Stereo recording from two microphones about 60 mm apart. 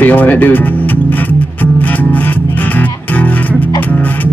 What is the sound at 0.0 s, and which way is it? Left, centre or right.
Music, left.